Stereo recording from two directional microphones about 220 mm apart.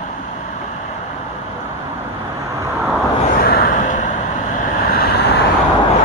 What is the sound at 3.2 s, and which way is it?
Vehicle, 35° left (ahead or behind).